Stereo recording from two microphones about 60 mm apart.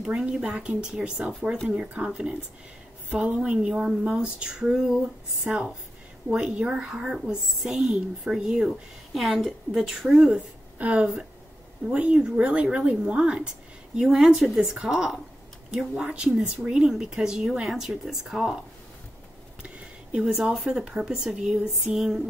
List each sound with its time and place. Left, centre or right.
0.0 s speech: centre
10.8 s speech: right; by 18.6 s centre
19.6 s a sound: centre
20.5 s speech: centre